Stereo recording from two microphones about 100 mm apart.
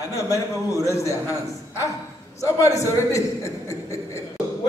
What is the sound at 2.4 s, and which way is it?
A man's voice, 30° left (ahead or behind).